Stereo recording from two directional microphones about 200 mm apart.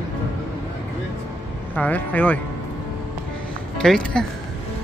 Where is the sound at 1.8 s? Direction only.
10° left (ahead or behind).